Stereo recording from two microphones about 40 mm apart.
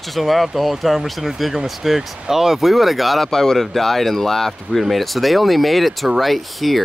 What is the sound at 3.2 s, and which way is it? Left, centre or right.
Speech, centre.